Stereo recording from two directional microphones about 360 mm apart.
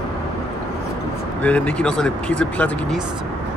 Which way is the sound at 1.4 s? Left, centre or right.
Centre.